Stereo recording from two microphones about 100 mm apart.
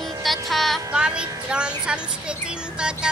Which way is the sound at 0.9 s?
10° right (ahead or behind).